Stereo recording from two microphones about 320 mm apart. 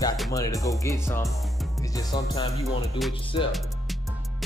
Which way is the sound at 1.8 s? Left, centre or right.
Centre.